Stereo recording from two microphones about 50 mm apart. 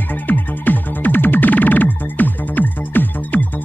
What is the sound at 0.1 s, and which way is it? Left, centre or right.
Music, left.